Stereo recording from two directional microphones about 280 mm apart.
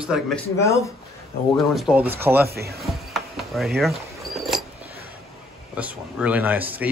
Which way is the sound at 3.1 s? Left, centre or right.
Centre.